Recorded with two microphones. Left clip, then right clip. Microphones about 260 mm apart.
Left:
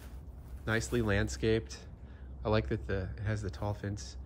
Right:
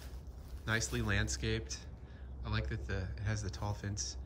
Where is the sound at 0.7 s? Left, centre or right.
Centre.